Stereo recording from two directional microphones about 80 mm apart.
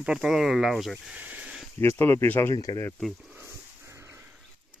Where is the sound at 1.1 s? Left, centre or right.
Centre.